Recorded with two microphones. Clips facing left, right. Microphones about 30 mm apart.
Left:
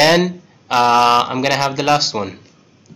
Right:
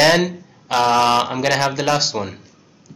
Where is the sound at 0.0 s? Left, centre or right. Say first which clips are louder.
Left 2 dB; centre.